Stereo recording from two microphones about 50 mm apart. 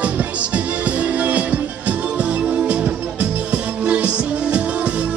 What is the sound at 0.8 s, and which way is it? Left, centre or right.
Music, right.